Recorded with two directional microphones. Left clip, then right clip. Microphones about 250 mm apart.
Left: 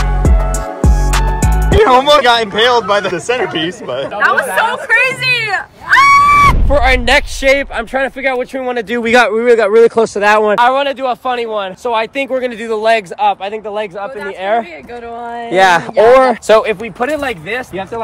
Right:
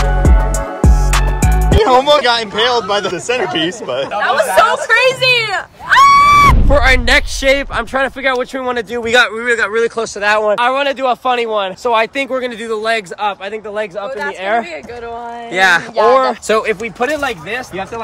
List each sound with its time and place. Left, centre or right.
0.0 s music: centre
1.7 s speech: centre
6.1 s speech: centre
8.9 s a man's voice: left
9.2 s speech: centre
10.5 s speech: centre
15.5 s speech: centre
16.4 s speech: centre